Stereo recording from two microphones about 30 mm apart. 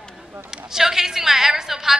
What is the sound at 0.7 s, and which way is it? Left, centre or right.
A woman's voice, centre.